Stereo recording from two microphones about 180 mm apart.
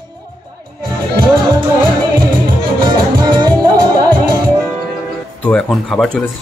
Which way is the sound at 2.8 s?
25° right (ahead or behind).